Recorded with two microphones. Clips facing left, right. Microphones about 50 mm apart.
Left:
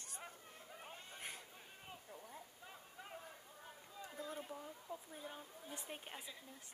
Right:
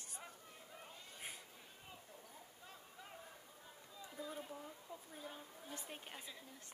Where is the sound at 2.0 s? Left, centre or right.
Centre.